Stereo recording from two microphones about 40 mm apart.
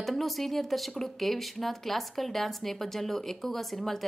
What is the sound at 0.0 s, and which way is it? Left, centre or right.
Speech, centre.